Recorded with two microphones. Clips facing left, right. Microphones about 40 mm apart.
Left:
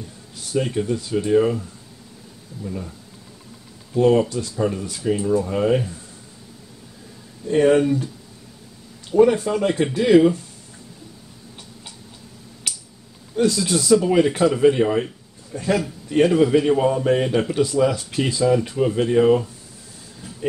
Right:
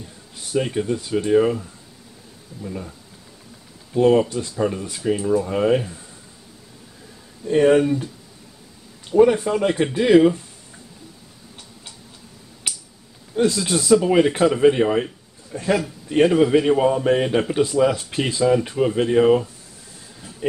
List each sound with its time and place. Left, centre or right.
0.5 s speech: centre
2.6 s speech: centre
3.9 s speech: centre
7.4 s speech: centre
9.1 s speech: centre
12.7 s a sound: right
13.4 s speech: right